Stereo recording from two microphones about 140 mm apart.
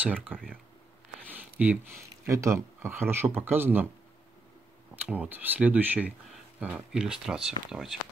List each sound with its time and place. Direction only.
0.0 s speech: 10° right (ahead or behind)
5.0 s speech: 10° right (ahead or behind)